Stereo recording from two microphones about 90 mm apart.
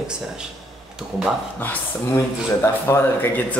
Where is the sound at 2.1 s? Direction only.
30° left (ahead or behind).